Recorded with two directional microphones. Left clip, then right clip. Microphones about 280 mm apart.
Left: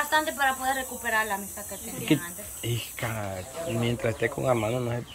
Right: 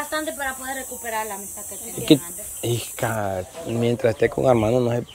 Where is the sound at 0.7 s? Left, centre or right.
Left.